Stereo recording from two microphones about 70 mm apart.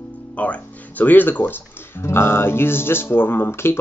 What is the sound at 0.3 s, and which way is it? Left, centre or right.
Speech, left.